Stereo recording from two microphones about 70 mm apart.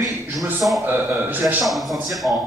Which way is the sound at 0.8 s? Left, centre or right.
Right.